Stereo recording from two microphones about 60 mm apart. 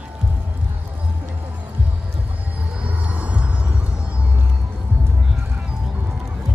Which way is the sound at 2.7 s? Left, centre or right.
Centre.